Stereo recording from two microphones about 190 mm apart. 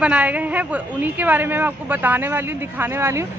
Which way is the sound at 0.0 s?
5° right (ahead or behind).